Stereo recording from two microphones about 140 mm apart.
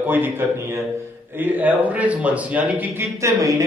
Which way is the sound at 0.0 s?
15° right (ahead or behind).